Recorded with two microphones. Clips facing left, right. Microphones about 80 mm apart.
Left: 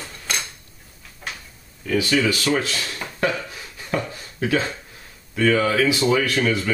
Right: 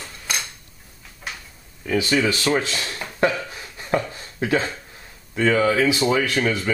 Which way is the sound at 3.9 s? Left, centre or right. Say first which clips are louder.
Right 3 dB; right.